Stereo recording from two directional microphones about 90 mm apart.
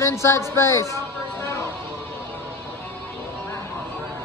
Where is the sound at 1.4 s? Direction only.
30° left (ahead or behind).